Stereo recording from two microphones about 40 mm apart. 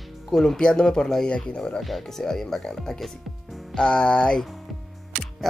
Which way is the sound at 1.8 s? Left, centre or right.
Centre.